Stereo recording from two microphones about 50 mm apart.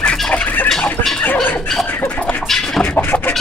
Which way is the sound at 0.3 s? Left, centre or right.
Left.